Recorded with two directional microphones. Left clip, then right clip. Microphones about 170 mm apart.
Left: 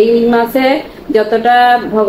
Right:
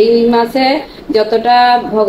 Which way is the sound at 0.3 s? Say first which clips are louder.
Even; 5° right (ahead or behind).